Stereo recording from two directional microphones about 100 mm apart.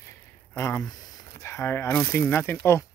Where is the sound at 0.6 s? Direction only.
30° left (ahead or behind).